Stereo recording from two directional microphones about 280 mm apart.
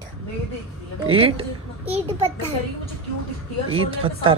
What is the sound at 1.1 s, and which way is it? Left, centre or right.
A man's voice, centre.